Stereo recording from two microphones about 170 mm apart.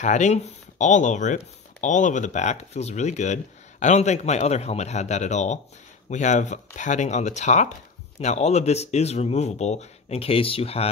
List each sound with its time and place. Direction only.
0.0 s speech: 45° left (ahead or behind)